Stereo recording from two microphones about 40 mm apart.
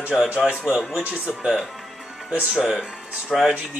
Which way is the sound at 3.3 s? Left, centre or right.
Centre.